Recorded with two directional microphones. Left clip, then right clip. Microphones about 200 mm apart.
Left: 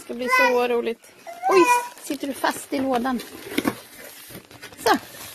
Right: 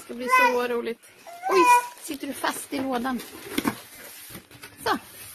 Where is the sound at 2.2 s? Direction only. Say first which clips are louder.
Left 4 dB; 5° left (ahead or behind).